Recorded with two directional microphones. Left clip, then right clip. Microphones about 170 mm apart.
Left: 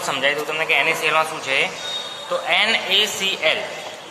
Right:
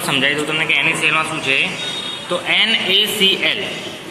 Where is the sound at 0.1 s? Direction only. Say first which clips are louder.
Right 4 dB; 15° left (ahead or behind).